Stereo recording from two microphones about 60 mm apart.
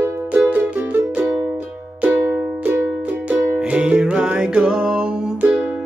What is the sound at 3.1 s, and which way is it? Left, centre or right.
Music, right.